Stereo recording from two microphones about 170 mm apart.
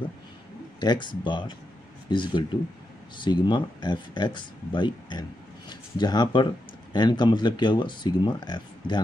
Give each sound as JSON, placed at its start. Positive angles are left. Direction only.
{"t": 0.7, "sound": "speech", "side_deg": 25}